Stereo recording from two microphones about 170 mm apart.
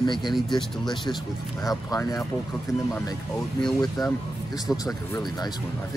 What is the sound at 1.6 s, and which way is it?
Speech, 20° left (ahead or behind).